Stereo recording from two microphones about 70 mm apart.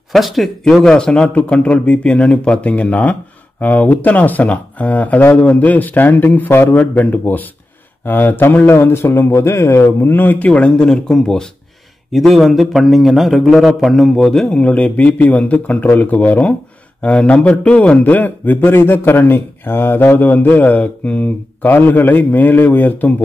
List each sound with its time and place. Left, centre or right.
0.1 s a man's voice: centre
0.8 s speech: centre; by 9.9 s left
10.0 s speech: left
10.8 s a man's voice: centre; by 23.1 s left